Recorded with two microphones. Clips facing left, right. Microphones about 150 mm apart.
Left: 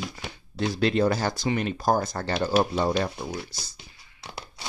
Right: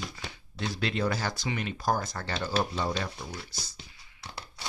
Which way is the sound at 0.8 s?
40° left (ahead or behind).